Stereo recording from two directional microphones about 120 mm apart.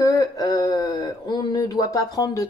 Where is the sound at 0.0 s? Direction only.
30° left (ahead or behind).